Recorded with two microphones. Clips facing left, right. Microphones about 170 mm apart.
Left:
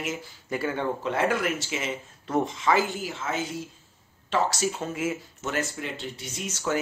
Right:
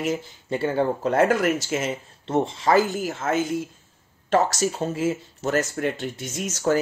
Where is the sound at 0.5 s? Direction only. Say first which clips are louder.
Right 5 dB; 30° right (ahead or behind).